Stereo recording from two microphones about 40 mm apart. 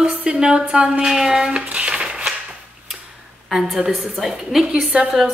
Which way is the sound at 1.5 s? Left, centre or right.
Right.